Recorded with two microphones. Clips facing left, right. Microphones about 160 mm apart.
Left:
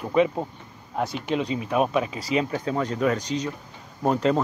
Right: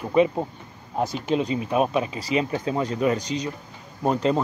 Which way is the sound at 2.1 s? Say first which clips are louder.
Even; centre (ahead or behind).